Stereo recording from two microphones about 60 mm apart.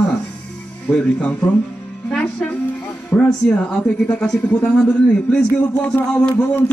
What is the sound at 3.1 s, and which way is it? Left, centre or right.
A woman's voice, centre.